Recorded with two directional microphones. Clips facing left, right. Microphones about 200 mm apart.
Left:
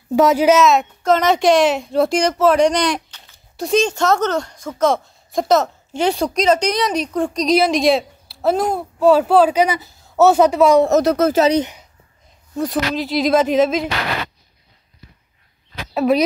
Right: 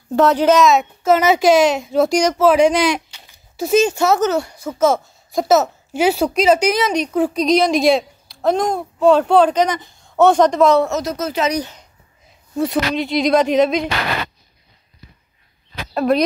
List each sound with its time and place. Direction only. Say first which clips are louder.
0.1 s speech: even; 10° left (ahead or behind)
11.0 s speech: left 8 dB; 60° left (ahead or behind)
11.3 s speech: left 1 dB; 30° left (ahead or behind)
12.5 s speech: right 2 dB; centre (ahead or behind)
15.9 s speech: left 1 dB; 5° left (ahead or behind)